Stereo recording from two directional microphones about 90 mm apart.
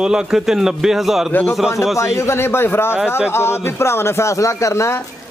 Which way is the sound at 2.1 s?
30° left (ahead or behind).